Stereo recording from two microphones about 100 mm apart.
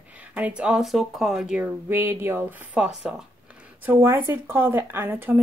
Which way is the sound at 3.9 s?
25° right (ahead or behind).